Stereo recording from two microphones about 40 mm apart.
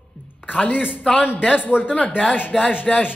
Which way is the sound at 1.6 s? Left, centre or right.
Left.